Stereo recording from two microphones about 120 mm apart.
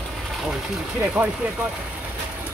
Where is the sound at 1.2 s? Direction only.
10° right (ahead or behind).